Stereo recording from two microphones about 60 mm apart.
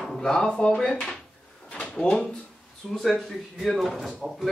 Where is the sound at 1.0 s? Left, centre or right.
Centre.